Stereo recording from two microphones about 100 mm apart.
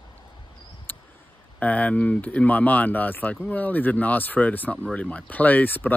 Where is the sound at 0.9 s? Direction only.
20° left (ahead or behind).